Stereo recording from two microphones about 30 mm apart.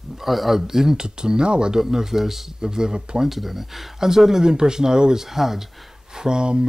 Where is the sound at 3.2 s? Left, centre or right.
Centre.